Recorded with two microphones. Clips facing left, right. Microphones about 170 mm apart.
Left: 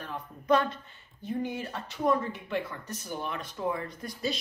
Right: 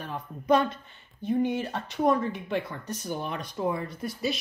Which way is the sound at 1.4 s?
20° right (ahead or behind).